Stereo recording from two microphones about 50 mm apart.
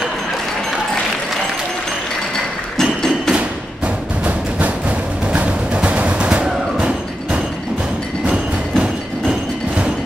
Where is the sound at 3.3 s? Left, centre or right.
Right.